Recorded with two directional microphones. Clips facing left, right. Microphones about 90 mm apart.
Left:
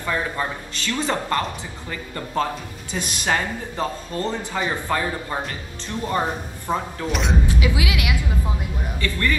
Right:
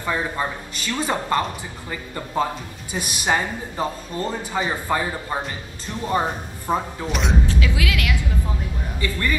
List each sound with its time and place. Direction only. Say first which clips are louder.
0.0 s a woman's voice: even; 20° right (ahead or behind); by 7.3 s centre (ahead or behind)
7.4 s speech: left 1 dB; 15° left (ahead or behind)
9.0 s speech: left 1 dB; 15° right (ahead or behind)